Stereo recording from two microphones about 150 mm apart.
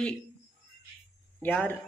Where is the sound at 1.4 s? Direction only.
10° left (ahead or behind).